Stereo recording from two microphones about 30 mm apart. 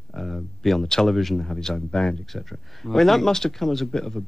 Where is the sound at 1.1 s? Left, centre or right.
Centre; by 2.2 s left.